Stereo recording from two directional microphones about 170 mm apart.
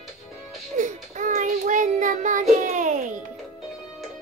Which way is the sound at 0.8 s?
50° right (ahead or behind).